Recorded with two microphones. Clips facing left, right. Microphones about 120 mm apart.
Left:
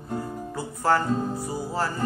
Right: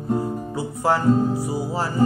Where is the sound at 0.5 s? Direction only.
10° right (ahead or behind).